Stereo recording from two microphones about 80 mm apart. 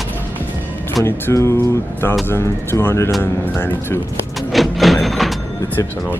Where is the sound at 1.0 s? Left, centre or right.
Left.